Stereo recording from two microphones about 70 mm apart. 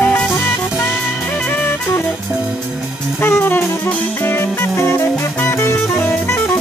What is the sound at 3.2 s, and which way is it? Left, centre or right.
Music, left.